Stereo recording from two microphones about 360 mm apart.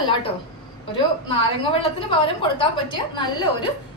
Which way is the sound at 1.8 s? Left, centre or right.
Centre.